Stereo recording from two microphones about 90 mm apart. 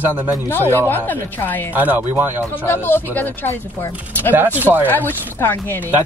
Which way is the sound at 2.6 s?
20° left (ahead or behind).